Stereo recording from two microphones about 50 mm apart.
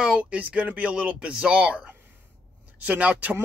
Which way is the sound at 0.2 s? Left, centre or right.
Right.